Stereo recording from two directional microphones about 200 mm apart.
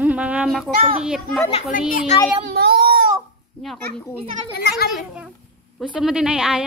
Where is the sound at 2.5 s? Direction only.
50° right (ahead or behind).